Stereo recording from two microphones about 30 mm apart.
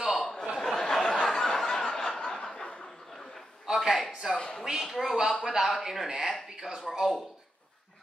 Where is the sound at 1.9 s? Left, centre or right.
Centre.